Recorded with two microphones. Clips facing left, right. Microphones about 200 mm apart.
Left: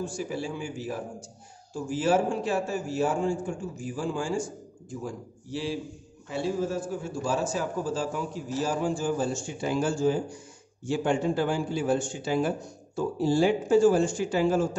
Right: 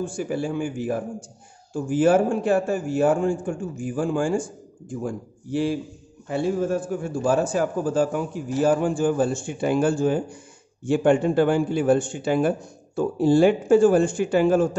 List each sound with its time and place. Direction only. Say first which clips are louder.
0.0 s a man's voice: right 5 dB; 55° right (ahead or behind)